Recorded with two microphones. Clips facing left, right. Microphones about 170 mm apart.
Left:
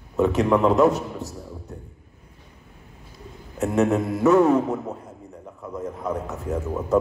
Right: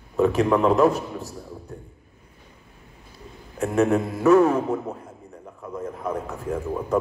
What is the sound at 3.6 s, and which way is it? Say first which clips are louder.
A man's voice: even; 20° left (ahead or behind).